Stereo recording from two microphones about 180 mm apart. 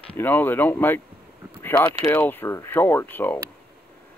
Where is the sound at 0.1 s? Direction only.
10° left (ahead or behind).